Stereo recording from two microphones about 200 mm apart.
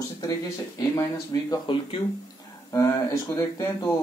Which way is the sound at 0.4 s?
15° left (ahead or behind).